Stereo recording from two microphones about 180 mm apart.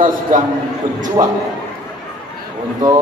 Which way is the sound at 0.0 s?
50° right (ahead or behind).